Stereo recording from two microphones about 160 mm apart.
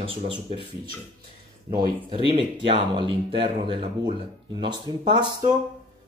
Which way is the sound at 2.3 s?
30° right (ahead or behind).